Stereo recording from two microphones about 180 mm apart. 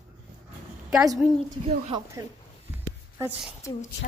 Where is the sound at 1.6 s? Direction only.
30° right (ahead or behind).